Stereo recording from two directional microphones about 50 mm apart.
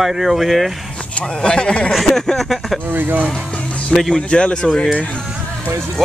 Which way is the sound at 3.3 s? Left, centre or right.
Left.